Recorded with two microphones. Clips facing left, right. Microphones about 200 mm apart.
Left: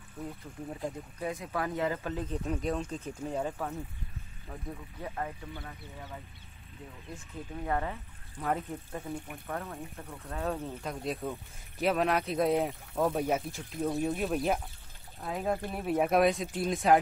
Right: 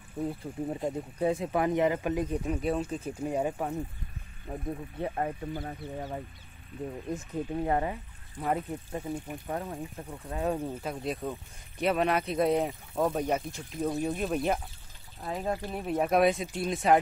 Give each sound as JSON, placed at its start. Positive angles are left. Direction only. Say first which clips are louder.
{"t": 0.3, "sound": "speech", "louder": "right 7 dB", "side_deg": -30}
{"t": 4.5, "sound": "speech", "louder": "right 7 dB", "side_deg": -30}
{"t": 7.5, "sound": "speech", "louder": "right 3 dB", "side_deg": -25}
{"t": 10.9, "sound": "speech", "louder": "left 1 dB", "side_deg": 0}